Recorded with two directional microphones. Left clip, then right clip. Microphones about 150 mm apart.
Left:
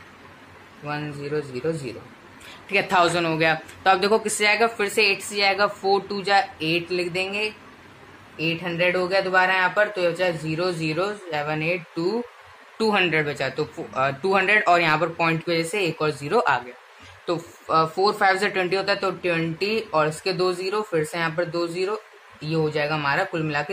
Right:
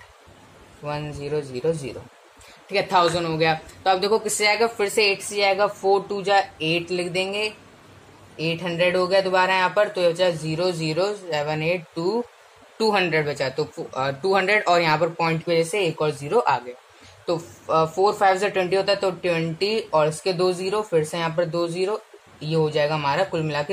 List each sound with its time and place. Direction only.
0.8 s speech: 15° right (ahead or behind)
4.3 s speech: 15° right (ahead or behind)
17.6 s speech: 5° right (ahead or behind)